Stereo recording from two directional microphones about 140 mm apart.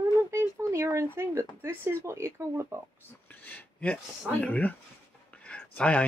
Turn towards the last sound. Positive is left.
turn(degrees=10)  # may be behind; listen again after turning